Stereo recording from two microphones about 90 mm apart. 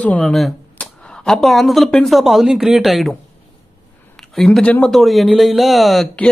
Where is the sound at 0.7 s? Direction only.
10° left (ahead or behind).